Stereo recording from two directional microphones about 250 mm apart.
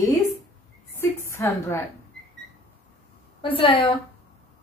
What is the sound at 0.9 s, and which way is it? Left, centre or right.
Speech, centre.